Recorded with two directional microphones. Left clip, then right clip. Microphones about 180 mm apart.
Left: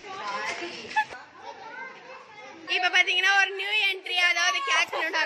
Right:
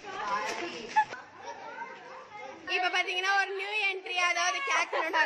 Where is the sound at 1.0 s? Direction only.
10° right (ahead or behind).